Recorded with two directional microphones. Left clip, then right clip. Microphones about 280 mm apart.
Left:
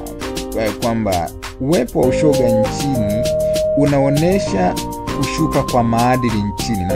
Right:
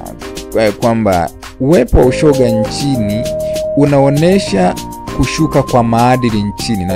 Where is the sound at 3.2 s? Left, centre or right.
Centre.